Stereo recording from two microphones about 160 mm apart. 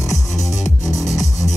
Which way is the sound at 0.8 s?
20° left (ahead or behind).